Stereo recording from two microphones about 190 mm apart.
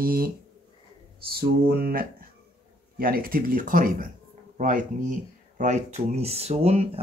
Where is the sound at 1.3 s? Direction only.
50° right (ahead or behind).